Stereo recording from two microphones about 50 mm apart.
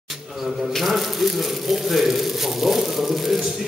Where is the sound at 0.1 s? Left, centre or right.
Centre.